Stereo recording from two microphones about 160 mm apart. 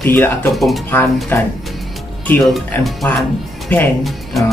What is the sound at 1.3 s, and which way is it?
Speech, 10° left (ahead or behind).